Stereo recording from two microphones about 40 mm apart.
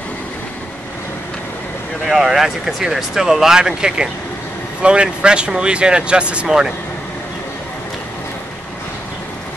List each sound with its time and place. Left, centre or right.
2.0 s speech: centre; by 6.4 s right
6.4 s speech: centre